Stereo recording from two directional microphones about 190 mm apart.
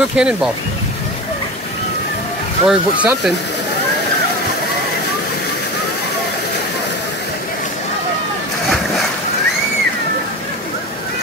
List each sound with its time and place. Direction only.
0.1 s speech: 5° right (ahead or behind)
2.6 s speech: 5° right (ahead or behind)